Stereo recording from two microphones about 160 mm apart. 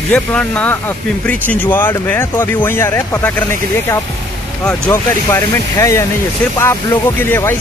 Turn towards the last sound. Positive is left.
turn(degrees=15)  # may be behind; listen again after turning